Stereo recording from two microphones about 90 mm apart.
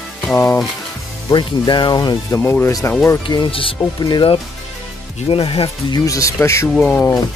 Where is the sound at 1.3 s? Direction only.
55° left (ahead or behind).